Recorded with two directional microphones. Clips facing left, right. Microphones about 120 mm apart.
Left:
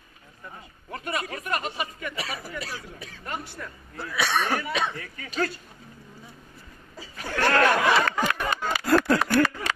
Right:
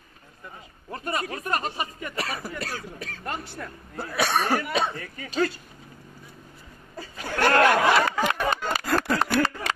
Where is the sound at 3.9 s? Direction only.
50° right (ahead or behind).